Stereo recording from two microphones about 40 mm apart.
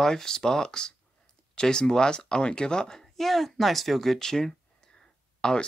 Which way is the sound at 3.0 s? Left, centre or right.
Centre.